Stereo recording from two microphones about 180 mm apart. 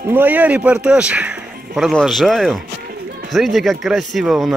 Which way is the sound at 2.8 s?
60° right (ahead or behind).